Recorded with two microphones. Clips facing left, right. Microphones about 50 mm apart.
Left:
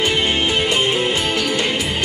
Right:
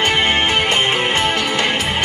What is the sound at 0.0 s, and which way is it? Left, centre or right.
Music, right.